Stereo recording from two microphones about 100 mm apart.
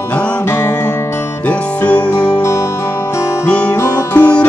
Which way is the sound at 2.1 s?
30° left (ahead or behind).